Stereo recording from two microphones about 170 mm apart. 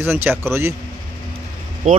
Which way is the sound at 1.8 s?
40° right (ahead or behind).